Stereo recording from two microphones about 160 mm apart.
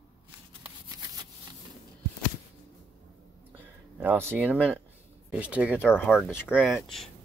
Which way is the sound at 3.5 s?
10° right (ahead or behind).